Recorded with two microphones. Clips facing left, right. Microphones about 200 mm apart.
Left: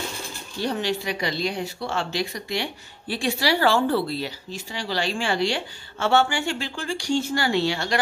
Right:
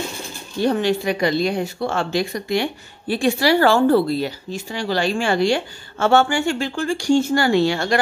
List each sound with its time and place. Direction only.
0.6 s speech: 50° right (ahead or behind)